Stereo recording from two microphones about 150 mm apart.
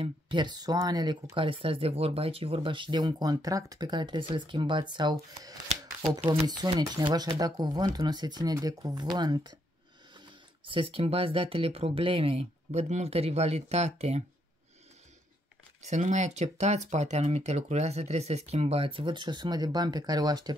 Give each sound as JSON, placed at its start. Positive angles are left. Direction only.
{"t": 0.0, "sound": "speech", "side_deg": -30}
{"t": 15.8, "sound": "speech", "side_deg": -50}